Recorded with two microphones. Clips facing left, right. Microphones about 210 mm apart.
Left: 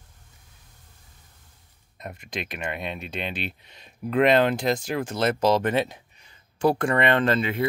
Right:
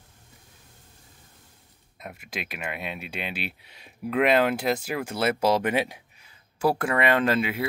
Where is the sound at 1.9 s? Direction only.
5° right (ahead or behind).